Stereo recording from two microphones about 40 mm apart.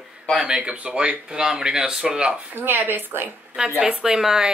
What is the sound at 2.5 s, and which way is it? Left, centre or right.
Speech, right.